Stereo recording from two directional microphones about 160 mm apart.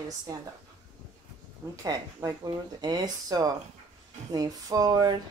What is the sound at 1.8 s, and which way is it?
Speech, 20° right (ahead or behind).